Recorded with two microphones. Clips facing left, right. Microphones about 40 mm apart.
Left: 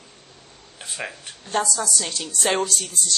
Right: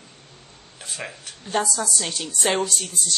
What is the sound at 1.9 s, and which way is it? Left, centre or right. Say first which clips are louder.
Speech: even; centre.